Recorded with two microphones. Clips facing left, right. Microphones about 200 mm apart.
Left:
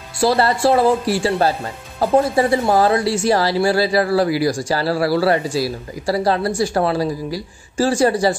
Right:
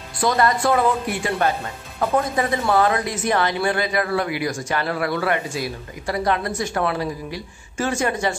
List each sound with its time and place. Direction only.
0.2 s speech: 30° left (ahead or behind)